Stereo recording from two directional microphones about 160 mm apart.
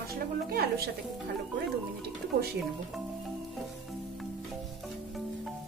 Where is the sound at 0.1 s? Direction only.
70° right (ahead or behind).